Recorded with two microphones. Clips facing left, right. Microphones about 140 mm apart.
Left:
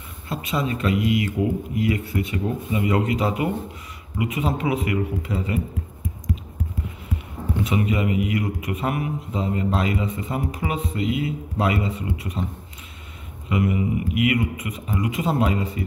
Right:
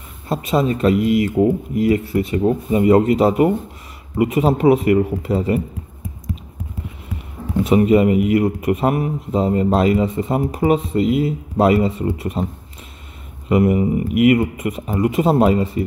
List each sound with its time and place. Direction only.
0.3 s a man's voice: 40° right (ahead or behind)
7.6 s speech: 45° right (ahead or behind)
8.6 s a man's voice: 35° right (ahead or behind)
13.5 s speech: 45° right (ahead or behind)